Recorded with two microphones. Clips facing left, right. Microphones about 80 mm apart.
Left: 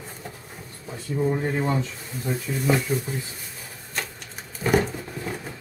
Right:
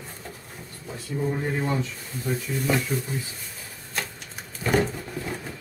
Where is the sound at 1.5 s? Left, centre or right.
Centre.